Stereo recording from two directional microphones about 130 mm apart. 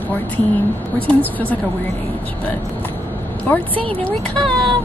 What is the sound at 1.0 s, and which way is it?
Speech, 10° left (ahead or behind).